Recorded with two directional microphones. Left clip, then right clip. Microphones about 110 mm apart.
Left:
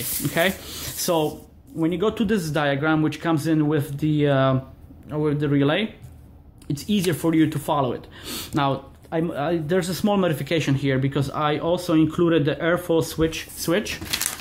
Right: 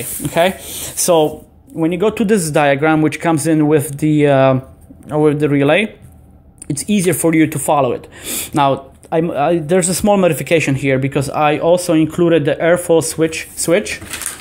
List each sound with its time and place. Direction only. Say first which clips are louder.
0.3 s speech: right 8 dB; 25° right (ahead or behind)
0.8 s a sound: right 10 dB; 40° right (ahead or behind)
1.8 s speech: right 7 dB; 45° right (ahead or behind)